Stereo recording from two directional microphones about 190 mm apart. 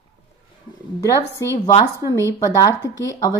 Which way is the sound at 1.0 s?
15° left (ahead or behind).